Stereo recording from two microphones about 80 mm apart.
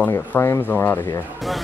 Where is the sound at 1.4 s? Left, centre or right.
Centre.